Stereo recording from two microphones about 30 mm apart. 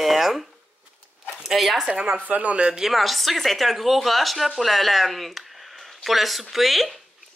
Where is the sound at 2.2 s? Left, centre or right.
Right.